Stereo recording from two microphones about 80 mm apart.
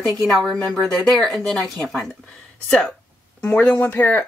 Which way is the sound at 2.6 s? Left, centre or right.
Centre.